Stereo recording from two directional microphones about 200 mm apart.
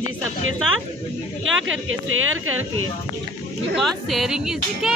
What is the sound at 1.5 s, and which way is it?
Speech, 80° right.